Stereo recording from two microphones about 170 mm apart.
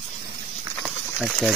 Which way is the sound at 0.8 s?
Centre (ahead or behind).